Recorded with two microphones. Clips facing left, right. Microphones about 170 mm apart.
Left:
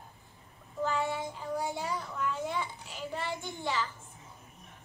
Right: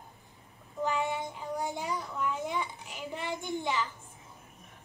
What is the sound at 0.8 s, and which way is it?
A child's voice, 15° right (ahead or behind).